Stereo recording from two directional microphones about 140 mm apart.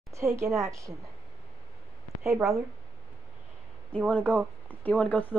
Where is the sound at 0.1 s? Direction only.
20° right (ahead or behind).